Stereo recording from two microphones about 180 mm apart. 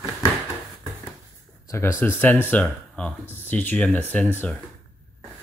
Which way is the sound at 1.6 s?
15° left (ahead or behind).